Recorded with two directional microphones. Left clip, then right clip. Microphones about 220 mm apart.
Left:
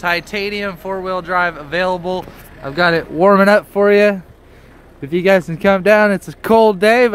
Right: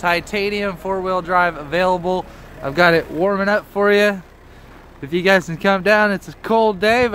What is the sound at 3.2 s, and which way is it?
Speech, 55° left (ahead or behind).